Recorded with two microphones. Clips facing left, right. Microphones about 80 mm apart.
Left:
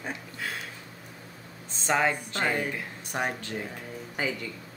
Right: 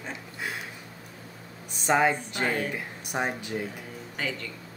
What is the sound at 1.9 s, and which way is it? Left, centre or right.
A woman's voice, centre.